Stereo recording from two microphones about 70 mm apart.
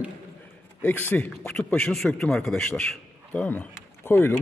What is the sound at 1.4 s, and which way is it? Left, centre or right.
A man's voice, centre.